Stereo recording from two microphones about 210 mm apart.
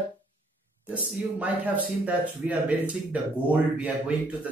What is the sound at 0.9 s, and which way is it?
A man's voice, 5° right (ahead or behind).